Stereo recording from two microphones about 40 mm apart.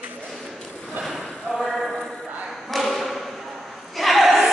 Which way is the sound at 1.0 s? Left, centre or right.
Centre.